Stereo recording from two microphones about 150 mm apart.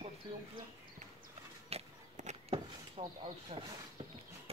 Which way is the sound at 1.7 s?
45° right (ahead or behind).